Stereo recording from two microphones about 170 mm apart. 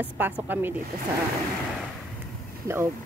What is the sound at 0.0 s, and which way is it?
Speech, 10° right (ahead or behind).